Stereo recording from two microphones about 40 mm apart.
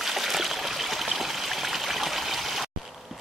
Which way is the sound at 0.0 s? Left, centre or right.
Centre.